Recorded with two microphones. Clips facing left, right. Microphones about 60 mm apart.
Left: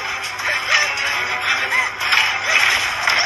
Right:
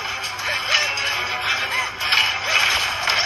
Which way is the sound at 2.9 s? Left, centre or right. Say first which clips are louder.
Left 4 dB; left.